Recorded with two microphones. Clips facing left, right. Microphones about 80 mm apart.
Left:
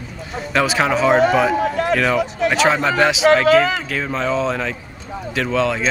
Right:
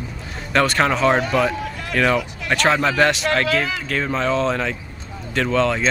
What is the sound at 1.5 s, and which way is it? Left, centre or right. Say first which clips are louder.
Run: left 10 dB; left.